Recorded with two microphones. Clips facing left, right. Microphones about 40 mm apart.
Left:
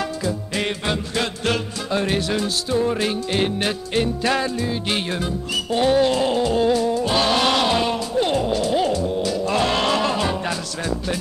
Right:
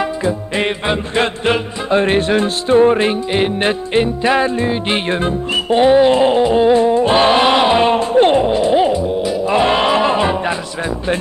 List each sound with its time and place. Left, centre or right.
0.0 s music: right